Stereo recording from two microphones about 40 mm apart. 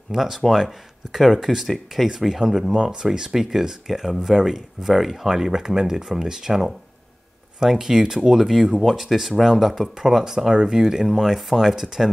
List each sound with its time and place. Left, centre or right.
0.1 s speech: centre; by 3.1 s right
3.1 s speech: centre
5.3 s speech: centre